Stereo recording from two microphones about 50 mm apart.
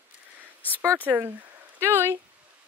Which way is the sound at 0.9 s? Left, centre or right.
Right.